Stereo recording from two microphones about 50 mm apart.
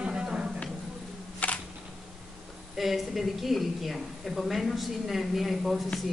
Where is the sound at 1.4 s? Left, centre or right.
Left.